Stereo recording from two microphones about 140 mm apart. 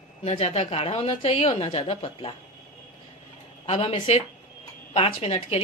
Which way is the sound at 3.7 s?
45° left (ahead or behind).